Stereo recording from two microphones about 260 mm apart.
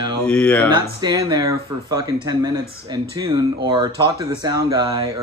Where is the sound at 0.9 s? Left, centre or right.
Centre.